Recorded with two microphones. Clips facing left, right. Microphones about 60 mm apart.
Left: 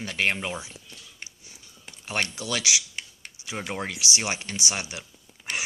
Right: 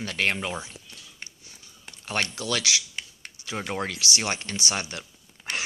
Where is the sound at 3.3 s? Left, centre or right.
Centre.